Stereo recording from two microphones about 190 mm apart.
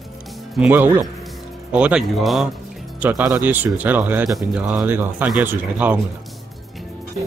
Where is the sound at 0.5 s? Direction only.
5° right (ahead or behind).